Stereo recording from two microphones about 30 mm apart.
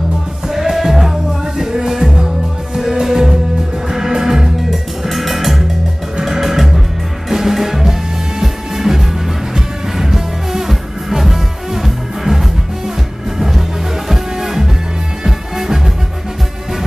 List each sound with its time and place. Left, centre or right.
0.5 s music: centre
5.0 s music: centre
14.0 s music: centre